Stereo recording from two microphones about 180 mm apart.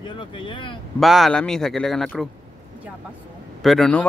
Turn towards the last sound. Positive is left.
turn(degrees=5)  # may be behind; listen again after turning